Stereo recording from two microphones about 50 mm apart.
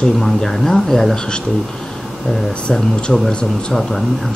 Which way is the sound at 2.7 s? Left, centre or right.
Centre.